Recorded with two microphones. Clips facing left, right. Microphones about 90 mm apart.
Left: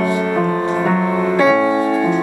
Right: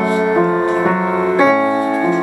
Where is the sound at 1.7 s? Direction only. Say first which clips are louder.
Even; 15° right (ahead or behind).